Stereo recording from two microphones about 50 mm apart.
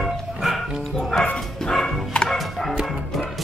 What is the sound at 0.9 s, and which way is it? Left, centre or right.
Music, centre.